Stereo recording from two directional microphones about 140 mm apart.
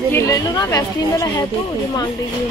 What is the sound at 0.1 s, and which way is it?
Speech, 25° left (ahead or behind).